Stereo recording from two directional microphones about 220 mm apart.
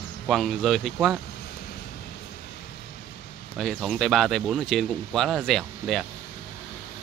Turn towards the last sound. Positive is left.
turn(degrees=0)  # may be behind; listen again after turning